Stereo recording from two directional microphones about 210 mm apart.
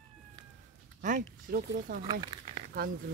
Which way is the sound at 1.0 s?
45° right (ahead or behind).